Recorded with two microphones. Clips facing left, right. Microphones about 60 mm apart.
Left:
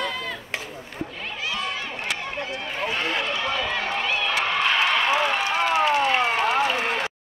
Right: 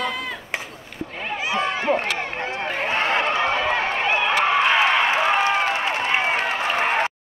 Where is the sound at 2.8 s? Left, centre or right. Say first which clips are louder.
Right 5 dB; right.